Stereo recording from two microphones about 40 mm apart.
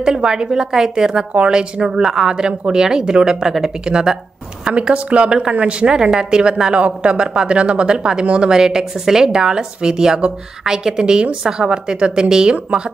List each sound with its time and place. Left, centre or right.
0.0 s a woman's voice: centre